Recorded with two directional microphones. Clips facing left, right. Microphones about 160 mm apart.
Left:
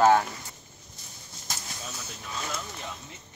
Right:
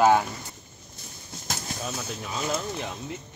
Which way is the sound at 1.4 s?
60° right (ahead or behind).